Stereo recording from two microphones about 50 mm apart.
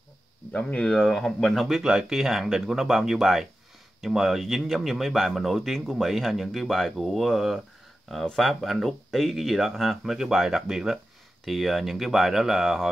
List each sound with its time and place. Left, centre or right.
0.5 s speech: left
0.9 s speech: centre
1.8 s speech: centre